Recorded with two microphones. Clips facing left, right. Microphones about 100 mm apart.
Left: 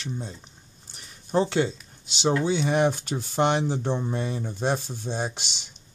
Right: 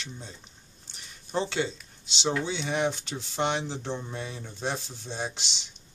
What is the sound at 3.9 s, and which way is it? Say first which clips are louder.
Speech: left 7 dB; 35° left (ahead or behind).